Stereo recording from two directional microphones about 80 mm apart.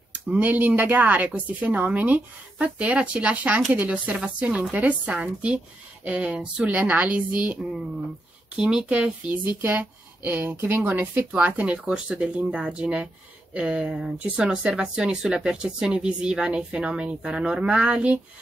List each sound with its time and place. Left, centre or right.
0.1 s speech: centre
8.5 s speech: centre